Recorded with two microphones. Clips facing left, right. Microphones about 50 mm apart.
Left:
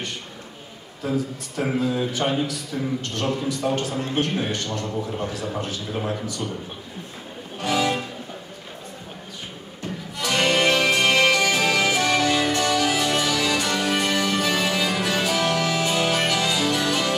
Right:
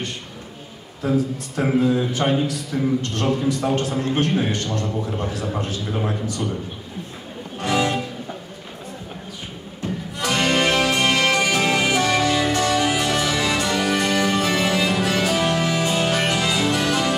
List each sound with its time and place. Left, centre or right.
1.6 s a man's voice: right
7.6 s music: right
10.1 s music: right